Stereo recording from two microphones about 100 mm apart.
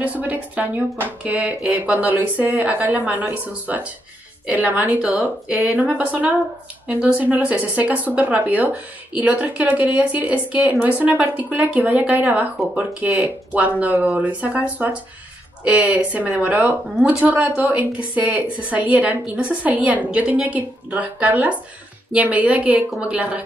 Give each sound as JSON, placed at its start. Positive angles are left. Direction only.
{"t": 0.0, "sound": "a woman's voice", "side_deg": -15}
{"t": 15.6, "sound": "a woman's voice", "side_deg": -10}